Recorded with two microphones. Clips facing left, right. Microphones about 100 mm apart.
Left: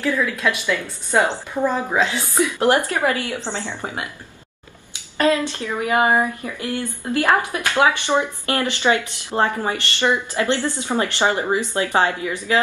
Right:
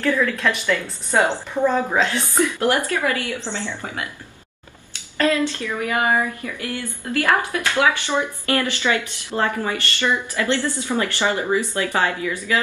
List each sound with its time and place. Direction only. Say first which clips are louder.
0.0 s a woman's voice: right 1 dB; 10° left (ahead or behind)
2.3 s speech: left 2 dB; 20° left (ahead or behind)
5.1 s speech: left 1 dB; 20° left (ahead or behind)